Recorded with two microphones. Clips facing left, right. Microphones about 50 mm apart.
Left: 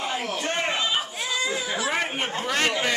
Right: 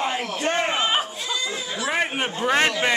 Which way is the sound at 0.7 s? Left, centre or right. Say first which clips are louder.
Right 3 dB; right.